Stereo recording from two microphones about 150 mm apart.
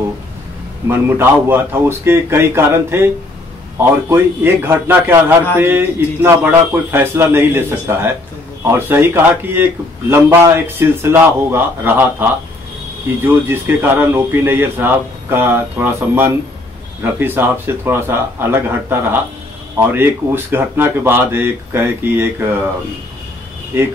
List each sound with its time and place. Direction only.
0.8 s a man's voice: 15° right (ahead or behind)